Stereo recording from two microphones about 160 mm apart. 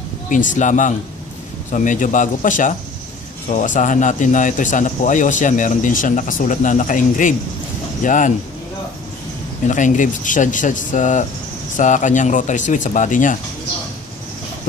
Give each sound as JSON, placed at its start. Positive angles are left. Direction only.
{"t": 0.3, "sound": "a man's voice", "side_deg": 55}
{"t": 9.7, "sound": "a man's voice", "side_deg": 50}